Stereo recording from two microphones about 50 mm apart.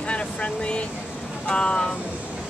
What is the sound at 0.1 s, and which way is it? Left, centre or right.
Speech, left.